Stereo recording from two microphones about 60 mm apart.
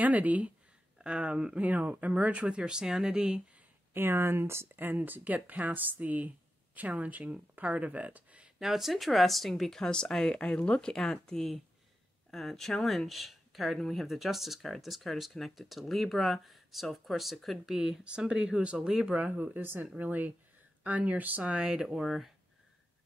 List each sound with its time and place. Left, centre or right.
0.0 s speech: right
3.9 s speech: right
8.5 s speech: centre
19.3 s speech: right
21.6 s speech: centre